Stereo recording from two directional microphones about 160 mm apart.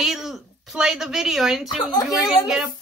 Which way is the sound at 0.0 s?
5° right (ahead or behind).